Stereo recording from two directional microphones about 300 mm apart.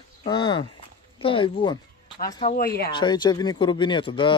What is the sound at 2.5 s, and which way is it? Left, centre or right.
Speech, left.